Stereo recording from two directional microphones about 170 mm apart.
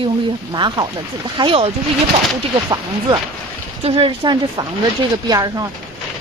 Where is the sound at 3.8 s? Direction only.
35° right (ahead or behind).